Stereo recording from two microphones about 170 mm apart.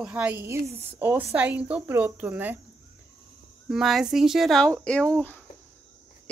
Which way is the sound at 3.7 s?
Centre (ahead or behind).